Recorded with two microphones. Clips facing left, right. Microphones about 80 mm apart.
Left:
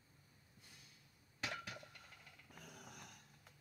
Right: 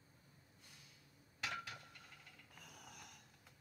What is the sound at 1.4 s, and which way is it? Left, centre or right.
Dishes, left.